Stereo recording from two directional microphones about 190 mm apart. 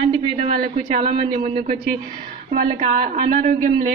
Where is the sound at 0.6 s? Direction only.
50° right (ahead or behind).